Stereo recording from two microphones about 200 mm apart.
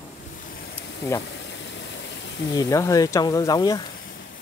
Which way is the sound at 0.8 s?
15° left (ahead or behind).